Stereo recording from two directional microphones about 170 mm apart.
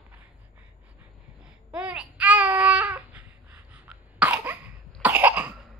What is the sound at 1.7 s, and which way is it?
Babbling, 5° right (ahead or behind).